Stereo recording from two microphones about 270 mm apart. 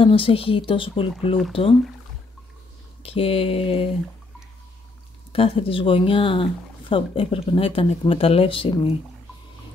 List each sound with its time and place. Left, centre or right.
0.0 s speech: centre
3.0 s speech: left
5.3 s speech: left